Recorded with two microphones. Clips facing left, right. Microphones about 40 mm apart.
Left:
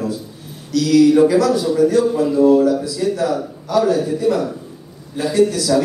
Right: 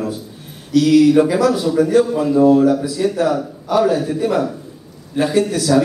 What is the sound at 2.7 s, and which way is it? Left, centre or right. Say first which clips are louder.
A man's voice: right 1 dB; right.